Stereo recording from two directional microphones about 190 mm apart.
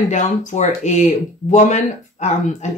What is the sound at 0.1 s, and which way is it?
Speech, 40° left (ahead or behind).